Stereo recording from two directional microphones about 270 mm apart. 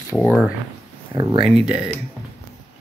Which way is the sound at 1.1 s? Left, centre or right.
Centre.